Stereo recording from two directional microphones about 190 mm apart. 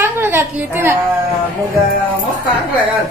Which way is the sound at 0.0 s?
10° right (ahead or behind).